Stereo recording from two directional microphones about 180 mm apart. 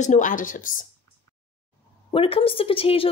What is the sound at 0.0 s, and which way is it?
Speech, 45° left (ahead or behind).